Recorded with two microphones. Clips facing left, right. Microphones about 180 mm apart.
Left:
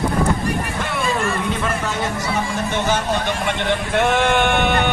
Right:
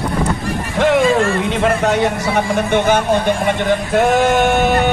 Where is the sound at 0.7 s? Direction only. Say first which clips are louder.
Right 12 dB; 90° right.